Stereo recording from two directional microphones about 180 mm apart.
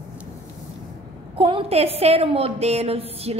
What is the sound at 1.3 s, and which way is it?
A woman's voice, 30° right (ahead or behind).